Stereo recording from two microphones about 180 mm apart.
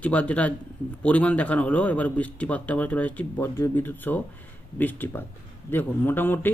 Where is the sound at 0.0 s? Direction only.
10° left (ahead or behind).